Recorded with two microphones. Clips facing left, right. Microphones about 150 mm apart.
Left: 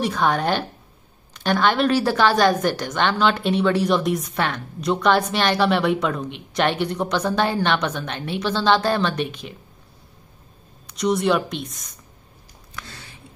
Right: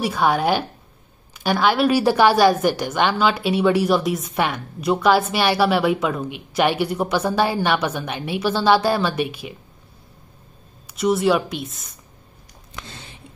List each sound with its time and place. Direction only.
0.0 s a woman's voice: 5° right (ahead or behind)
10.9 s speech: 5° right (ahead or behind)
12.7 s a sound: 20° right (ahead or behind)